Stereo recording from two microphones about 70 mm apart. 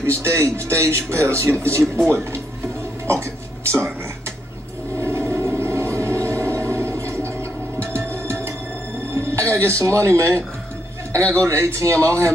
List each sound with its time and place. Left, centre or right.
0.0 s speech: right
5.0 s music: right
9.1 s speech: right